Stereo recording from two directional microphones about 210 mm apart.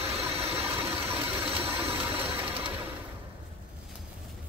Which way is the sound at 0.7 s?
25° right (ahead or behind).